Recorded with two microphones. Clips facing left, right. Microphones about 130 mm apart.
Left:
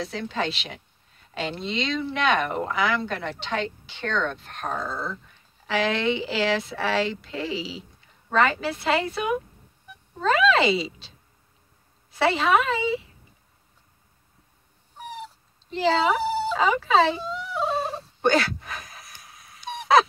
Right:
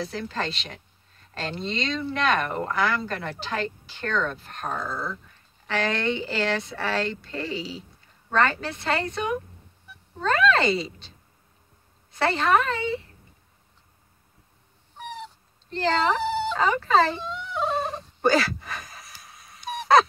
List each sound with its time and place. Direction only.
0.0 s speech: centre (ahead or behind)
15.7 s speech: 5° left (ahead or behind)
16.4 s a sound: 5° left (ahead or behind)